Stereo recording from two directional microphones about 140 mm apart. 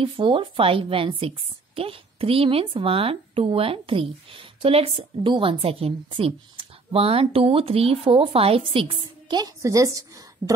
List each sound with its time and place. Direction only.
0.0 s speech: 40° right (ahead or behind)